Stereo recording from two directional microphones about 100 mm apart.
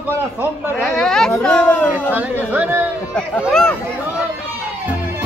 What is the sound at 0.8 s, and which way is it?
Speech, 5° left (ahead or behind).